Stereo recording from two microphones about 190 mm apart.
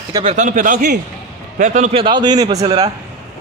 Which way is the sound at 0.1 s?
30° right (ahead or behind).